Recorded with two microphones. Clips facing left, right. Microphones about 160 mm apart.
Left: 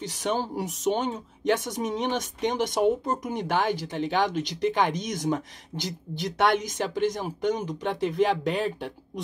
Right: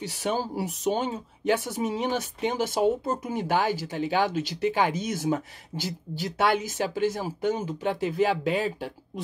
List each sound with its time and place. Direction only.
0.6 s speech: 10° right (ahead or behind)